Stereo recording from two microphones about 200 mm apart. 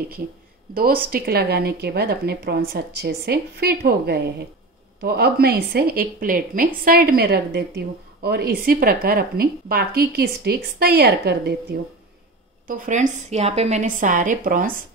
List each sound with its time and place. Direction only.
0.7 s a woman's voice: 45° right (ahead or behind)
12.6 s a woman's voice: 40° right (ahead or behind)